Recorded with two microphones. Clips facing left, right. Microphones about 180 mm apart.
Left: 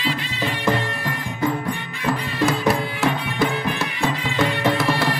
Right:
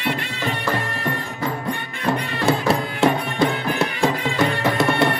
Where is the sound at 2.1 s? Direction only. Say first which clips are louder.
Right 1 dB; 25° right (ahead or behind).